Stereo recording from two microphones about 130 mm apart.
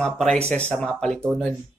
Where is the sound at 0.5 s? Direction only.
10° left (ahead or behind).